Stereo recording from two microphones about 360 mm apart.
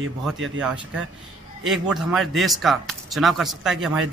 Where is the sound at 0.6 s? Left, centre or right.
Centre.